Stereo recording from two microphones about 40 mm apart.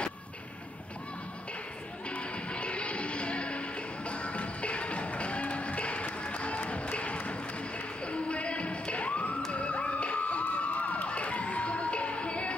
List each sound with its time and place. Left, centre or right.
2.0 s music: left
8.0 s a sound: left
11.1 s crowd: left